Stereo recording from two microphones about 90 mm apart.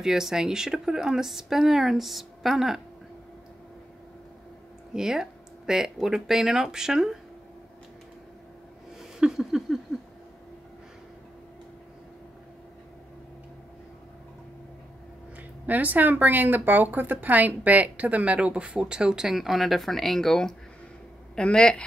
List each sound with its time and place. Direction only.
0.0 s speech: 5° right (ahead or behind)
4.9 s speech: 5° right (ahead or behind)
9.2 s a sound: 5° right (ahead or behind)
15.6 s speech: 20° right (ahead or behind); by 21.8 s 10° left (ahead or behind)